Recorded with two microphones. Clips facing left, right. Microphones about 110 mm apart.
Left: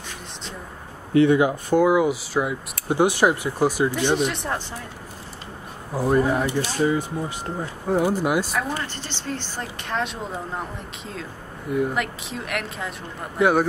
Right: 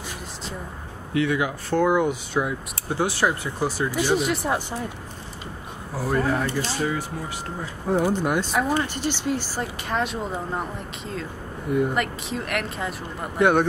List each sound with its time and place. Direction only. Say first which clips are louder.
1.1 s speech: left 6 dB; 25° left (ahead or behind)
1.7 s speech: left 1 dB; 5° left (ahead or behind)
2.9 s speech: left 4 dB; 15° left (ahead or behind)
3.9 s speech: even; 5° right (ahead or behind)
5.9 s speech: left 3 dB; 15° left (ahead or behind)
7.6 s speech: left 1 dB; centre (ahead or behind)
8.8 s speech: right 6 dB; 15° right (ahead or behind)